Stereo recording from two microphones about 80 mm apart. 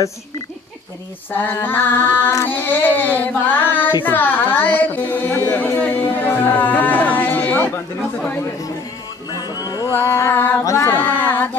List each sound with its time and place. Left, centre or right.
1.3 s child singing: left
4.0 s a woman's voice: left
9.3 s music: left
9.9 s child singing: left
10.6 s a capella: left
10.9 s female singing: left